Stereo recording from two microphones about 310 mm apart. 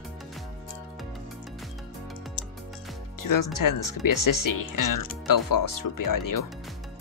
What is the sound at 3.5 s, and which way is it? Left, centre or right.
Speech, left.